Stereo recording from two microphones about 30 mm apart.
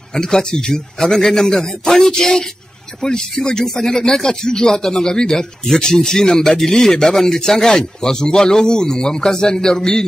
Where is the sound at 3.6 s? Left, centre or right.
Centre.